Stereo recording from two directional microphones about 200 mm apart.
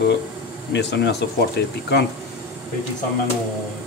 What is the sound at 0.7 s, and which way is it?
Speech, 60° left (ahead or behind).